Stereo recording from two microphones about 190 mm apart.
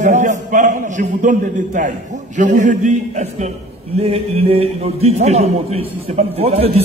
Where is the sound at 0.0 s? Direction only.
40° right (ahead or behind).